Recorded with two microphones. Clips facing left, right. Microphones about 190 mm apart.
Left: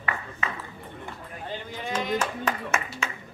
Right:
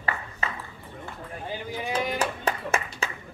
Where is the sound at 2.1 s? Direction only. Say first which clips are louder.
Even; 35° right (ahead or behind).